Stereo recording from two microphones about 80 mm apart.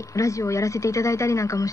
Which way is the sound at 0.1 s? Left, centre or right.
Left.